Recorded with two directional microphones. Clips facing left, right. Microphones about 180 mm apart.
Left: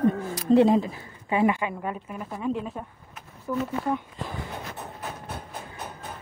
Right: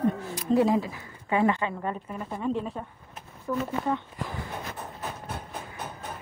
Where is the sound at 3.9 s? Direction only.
20° left (ahead or behind).